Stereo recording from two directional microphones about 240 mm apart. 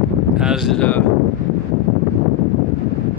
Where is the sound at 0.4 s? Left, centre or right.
Centre.